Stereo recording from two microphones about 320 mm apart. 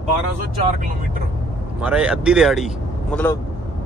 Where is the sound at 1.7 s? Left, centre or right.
Centre.